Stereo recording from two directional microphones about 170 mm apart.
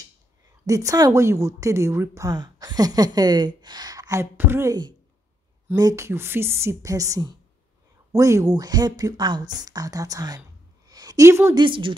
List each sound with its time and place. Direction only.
0.7 s a woman's voice: 20° right (ahead or behind)
10.9 s a sound: 20° right (ahead or behind)
11.6 s a woman's voice: 30° right (ahead or behind)